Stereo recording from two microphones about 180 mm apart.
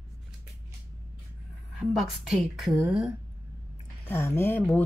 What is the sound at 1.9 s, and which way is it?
Speech, centre (ahead or behind).